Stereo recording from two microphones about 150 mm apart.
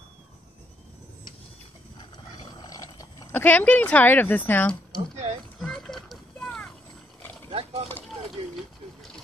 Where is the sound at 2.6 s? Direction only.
25° left (ahead or behind).